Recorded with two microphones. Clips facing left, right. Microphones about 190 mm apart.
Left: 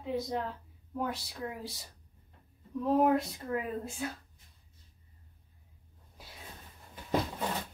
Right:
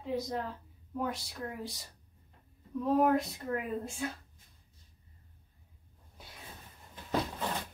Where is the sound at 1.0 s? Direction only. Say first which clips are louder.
Left 1 dB; centre (ahead or behind).